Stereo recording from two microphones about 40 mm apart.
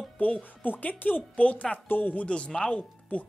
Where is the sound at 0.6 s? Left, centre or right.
Left.